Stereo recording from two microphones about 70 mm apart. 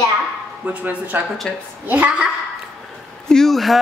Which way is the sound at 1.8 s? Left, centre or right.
Right.